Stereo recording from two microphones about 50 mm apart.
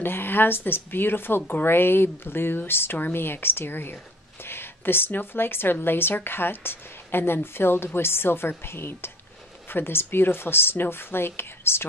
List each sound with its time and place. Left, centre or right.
0.0 s a woman's voice: left